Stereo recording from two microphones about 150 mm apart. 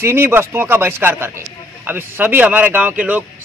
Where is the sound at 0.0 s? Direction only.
15° right (ahead or behind).